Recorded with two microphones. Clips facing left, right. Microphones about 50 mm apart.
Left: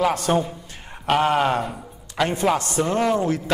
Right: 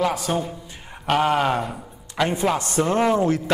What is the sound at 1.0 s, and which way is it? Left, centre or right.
Speech, centre.